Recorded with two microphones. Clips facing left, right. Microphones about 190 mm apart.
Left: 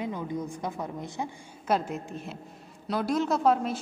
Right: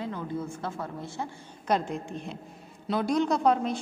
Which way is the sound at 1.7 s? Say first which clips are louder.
Even; 5° left (ahead or behind).